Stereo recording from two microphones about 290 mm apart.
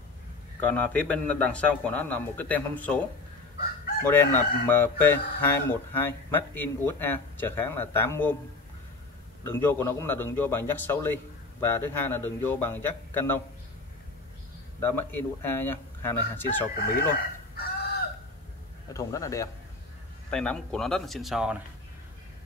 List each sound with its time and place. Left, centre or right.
0.6 s a man's voice: centre
4.0 s speech: centre
9.4 s speech: centre
14.8 s speech: centre
16.7 s speech: left
18.9 s a man's voice: centre